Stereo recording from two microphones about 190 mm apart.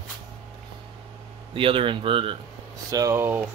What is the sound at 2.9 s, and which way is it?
Speech, 15° right (ahead or behind).